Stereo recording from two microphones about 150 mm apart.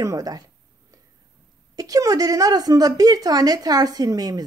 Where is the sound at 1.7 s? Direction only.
25° right (ahead or behind).